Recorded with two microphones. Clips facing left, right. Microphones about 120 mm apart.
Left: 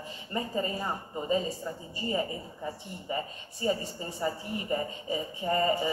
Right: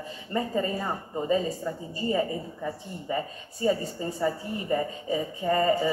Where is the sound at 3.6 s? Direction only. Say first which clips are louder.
Right 4 dB; 25° left (ahead or behind).